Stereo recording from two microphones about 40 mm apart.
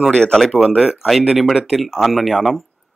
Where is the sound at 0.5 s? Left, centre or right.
Centre.